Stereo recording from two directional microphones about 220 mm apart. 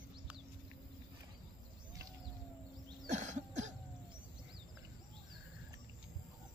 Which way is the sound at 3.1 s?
35° right (ahead or behind).